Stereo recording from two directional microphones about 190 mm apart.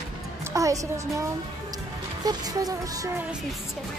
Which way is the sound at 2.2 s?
20° right (ahead or behind).